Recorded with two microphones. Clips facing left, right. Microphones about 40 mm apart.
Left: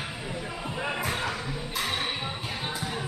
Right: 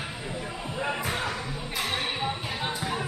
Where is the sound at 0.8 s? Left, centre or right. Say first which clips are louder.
Right 1 dB; centre.